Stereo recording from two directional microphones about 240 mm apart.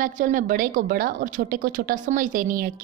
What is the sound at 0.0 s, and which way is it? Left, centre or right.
A woman's voice, right.